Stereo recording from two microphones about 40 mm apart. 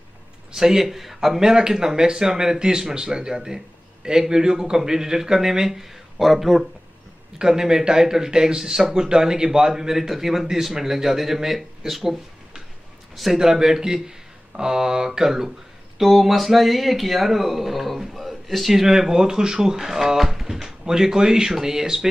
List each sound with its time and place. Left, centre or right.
0.5 s a man's voice: centre
1.5 s speech: centre
7.3 s a man's voice: centre
13.4 s speech: centre